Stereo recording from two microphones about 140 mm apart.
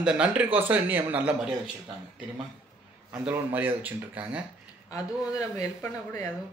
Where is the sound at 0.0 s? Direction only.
10° right (ahead or behind).